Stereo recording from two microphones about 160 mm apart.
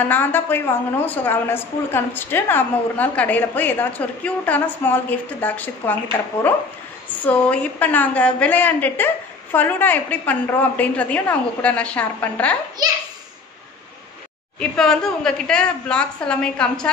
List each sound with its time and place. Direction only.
0.0 s a woman's voice: 10° left (ahead or behind)
7.1 s a woman's voice: 10° left (ahead or behind)
12.8 s a child's voice: 25° right (ahead or behind)
14.6 s a woman's voice: 5° left (ahead or behind)